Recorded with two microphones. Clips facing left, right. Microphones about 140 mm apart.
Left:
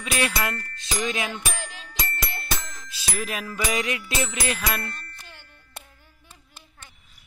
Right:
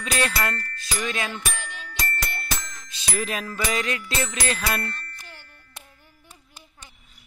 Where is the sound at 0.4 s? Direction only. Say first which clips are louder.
Right 1 dB; 15° left (ahead or behind).